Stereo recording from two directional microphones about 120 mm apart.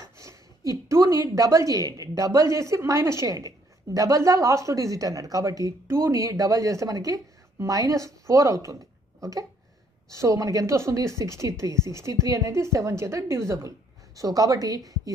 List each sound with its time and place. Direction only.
0.0 s a woman's voice: 25° right (ahead or behind)